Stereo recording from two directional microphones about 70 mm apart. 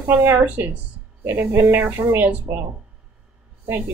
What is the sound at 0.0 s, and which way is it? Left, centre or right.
Speech, right.